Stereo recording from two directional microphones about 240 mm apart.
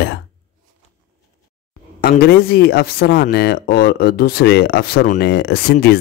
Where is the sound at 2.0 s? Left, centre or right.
Left.